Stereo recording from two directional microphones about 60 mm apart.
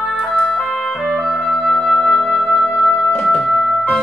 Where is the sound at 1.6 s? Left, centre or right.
Left.